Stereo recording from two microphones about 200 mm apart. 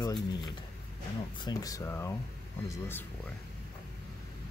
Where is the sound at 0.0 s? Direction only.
20° left (ahead or behind).